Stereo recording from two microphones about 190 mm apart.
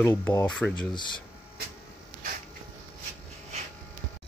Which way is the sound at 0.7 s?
25° left (ahead or behind).